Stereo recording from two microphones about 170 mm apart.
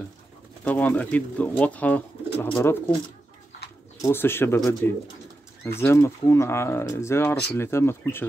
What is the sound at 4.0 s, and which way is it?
Speech, 15° left (ahead or behind).